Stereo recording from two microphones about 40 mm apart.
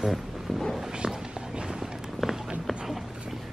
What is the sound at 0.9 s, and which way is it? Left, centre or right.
Run, centre.